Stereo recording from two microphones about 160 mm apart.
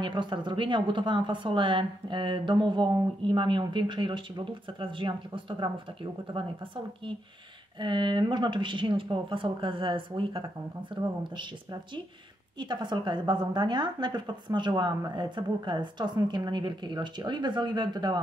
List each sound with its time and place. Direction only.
0.0 s a woman's voice: 30° right (ahead or behind)
7.8 s a woman's voice: 30° right (ahead or behind)
12.5 s a woman's voice: 30° right (ahead or behind)